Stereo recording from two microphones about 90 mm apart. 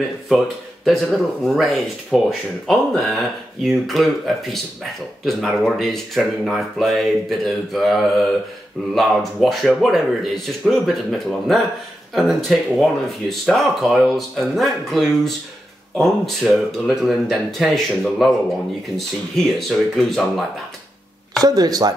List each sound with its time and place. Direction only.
0.8 s speech: centre (ahead or behind)
21.4 s speech: 45° right (ahead or behind)